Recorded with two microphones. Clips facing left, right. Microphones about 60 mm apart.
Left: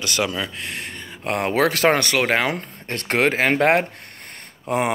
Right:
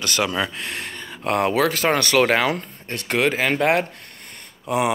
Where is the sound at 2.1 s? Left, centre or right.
Centre.